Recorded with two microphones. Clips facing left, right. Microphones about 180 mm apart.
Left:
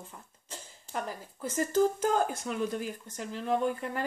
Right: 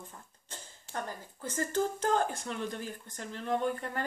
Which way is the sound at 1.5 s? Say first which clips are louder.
Left 5 dB; 10° left (ahead or behind).